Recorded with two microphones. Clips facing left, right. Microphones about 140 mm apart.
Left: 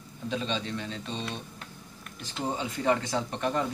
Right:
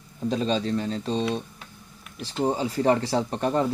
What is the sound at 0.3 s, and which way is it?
Speech, 40° right (ahead or behind).